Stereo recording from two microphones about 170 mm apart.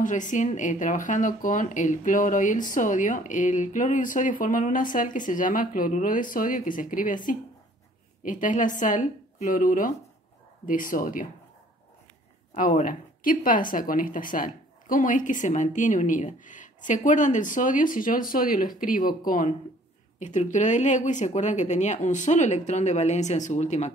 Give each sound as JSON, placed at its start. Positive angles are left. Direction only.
{"t": 0.0, "sound": "speech", "side_deg": 50}
{"t": 12.5, "sound": "speech", "side_deg": 50}